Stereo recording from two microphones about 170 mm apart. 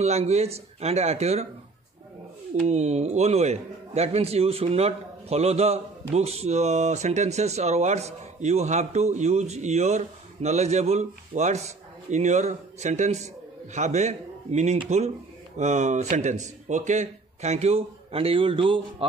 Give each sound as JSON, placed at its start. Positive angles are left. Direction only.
{"t": 0.0, "sound": "a man's voice", "side_deg": -40}
{"t": 2.6, "sound": "a man's voice", "side_deg": -40}